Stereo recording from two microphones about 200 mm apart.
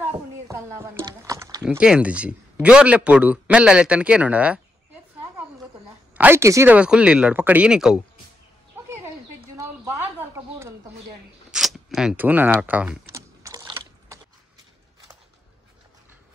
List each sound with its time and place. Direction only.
0.5 s speech: 10° right (ahead or behind)
1.8 s a man's voice: 5° right (ahead or behind)
6.1 s speech: 10° right (ahead or behind)
11.5 s typing: centre (ahead or behind)